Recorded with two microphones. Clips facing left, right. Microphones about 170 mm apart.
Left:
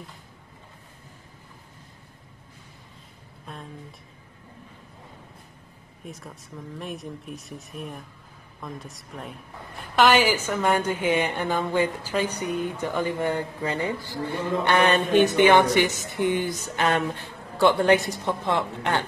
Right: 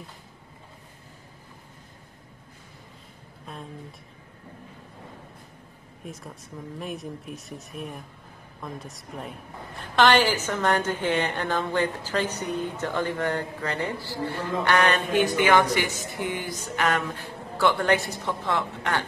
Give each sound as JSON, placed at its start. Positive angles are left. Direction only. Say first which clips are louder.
{"t": 3.5, "sound": "speech", "louder": "even", "side_deg": 0}
{"t": 6.8, "sound": "a woman's voice", "louder": "right 1 dB", "side_deg": 0}